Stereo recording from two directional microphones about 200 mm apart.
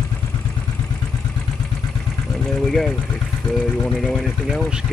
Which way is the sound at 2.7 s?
Centre (ahead or behind).